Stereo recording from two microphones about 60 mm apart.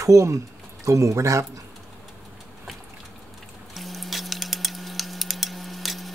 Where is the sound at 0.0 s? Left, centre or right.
Right.